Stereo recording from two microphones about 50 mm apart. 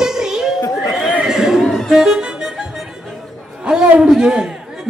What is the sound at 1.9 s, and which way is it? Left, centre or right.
Music, centre.